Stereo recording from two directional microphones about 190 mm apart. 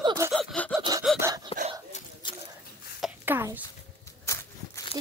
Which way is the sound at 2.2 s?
25° left (ahead or behind).